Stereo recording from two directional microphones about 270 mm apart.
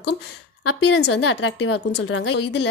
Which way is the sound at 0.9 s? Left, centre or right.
Left.